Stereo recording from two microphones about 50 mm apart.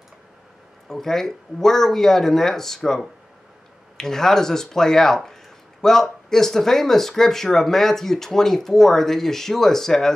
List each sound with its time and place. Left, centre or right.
0.8 s speech: centre